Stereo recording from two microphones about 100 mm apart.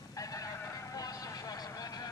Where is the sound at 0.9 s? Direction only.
35° left (ahead or behind).